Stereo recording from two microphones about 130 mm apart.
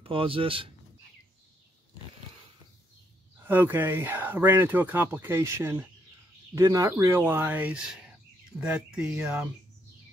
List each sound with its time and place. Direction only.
0.0 s speech: 45° right (ahead or behind)
3.4 s speech: 15° right (ahead or behind)